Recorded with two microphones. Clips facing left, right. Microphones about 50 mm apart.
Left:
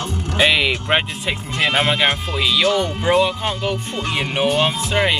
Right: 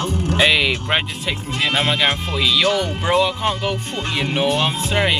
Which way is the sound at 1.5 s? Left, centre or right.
Left.